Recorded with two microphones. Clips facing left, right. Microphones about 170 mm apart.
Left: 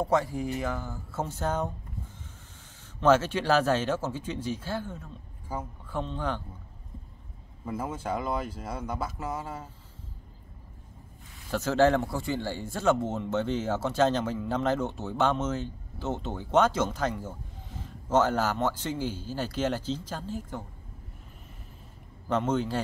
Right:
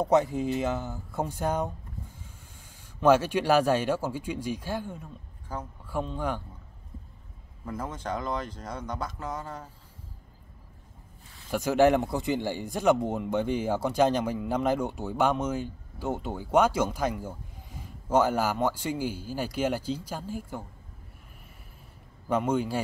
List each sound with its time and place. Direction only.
0.0 s speech: 20° right (ahead or behind)
3.0 s speech: 10° right (ahead or behind)
5.5 s speech: 10° left (ahead or behind)
5.9 s speech: 10° right (ahead or behind)
7.6 s speech: 10° left (ahead or behind)
11.5 s speech: 15° right (ahead or behind)
22.3 s speech: 10° right (ahead or behind)